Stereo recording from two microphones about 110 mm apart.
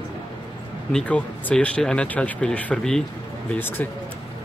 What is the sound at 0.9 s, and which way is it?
Speech, 10° left (ahead or behind).